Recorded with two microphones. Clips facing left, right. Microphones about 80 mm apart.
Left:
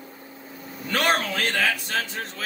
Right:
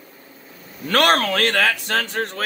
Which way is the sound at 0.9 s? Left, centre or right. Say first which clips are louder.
Right 6 dB; right.